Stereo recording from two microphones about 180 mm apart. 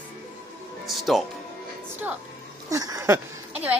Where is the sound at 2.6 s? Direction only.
20° right (ahead or behind).